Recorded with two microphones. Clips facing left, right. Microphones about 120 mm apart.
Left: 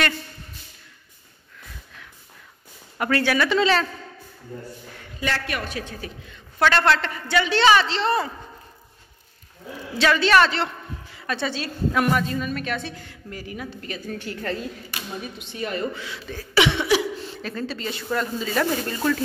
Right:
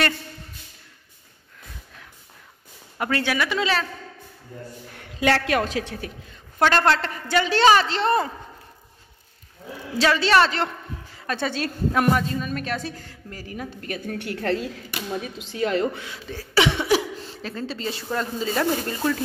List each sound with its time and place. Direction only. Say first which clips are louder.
3.0 s speech: left 3 dB; 20° right (ahead or behind)
5.2 s a woman's voice: right 7 dB; 85° right; by 6.1 s 65° right (ahead or behind)
6.3 s a woman's voice: even; 40° right (ahead or behind)
9.9 s a woman's voice: even; 30° right (ahead or behind); by 14.7 s 70° right (ahead or behind)
15.5 s a woman's voice: right 5 dB; 90° right
16.3 s cough: even; 35° right (ahead or behind)
17.4 s speech: right 1 dB; 25° right (ahead or behind)